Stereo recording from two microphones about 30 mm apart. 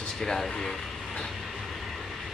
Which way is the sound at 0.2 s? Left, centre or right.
Centre.